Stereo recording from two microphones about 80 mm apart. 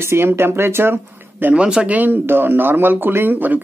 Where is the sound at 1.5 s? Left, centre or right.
Centre.